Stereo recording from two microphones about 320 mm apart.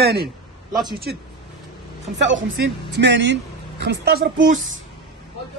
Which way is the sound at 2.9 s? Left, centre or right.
Right.